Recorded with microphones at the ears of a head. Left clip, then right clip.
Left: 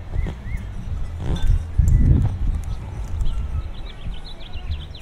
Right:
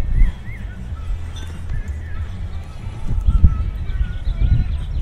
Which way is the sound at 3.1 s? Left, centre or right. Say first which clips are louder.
Right 8 dB; right.